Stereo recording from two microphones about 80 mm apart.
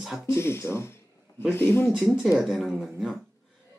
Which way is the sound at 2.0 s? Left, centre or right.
Centre.